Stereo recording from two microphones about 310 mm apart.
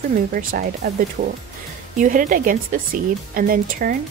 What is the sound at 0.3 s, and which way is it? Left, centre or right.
Speech, right.